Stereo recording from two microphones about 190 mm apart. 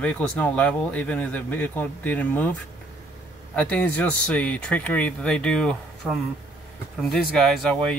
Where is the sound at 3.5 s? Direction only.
5° left (ahead or behind).